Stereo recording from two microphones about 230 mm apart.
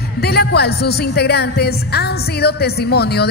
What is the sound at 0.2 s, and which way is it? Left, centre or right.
A woman's voice, left.